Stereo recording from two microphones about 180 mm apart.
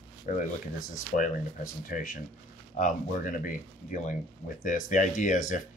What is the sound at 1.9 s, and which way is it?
Speech, 45° left (ahead or behind).